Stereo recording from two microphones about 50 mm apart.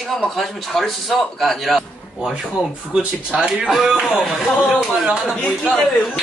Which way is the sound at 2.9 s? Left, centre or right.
Centre.